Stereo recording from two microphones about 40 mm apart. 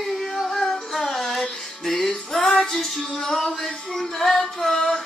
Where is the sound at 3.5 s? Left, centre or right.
Centre.